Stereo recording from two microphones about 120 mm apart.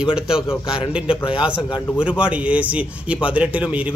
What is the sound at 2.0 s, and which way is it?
Speech, 10° right (ahead or behind).